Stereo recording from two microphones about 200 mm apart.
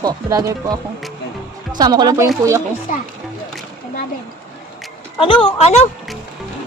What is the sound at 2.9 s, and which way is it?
Speech, 40° left (ahead or behind).